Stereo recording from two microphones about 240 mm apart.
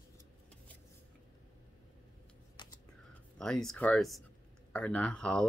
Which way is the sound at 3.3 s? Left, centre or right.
Centre.